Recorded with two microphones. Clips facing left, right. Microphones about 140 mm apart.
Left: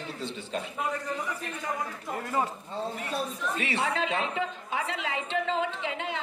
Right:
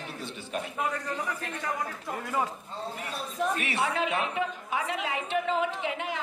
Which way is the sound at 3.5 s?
30° left (ahead or behind).